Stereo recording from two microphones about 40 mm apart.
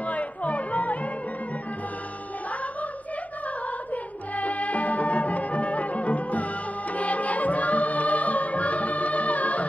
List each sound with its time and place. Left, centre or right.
0.0 s music: left
3.9 s music: left